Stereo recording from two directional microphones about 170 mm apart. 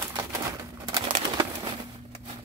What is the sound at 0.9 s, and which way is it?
Bird, 30° right (ahead or behind).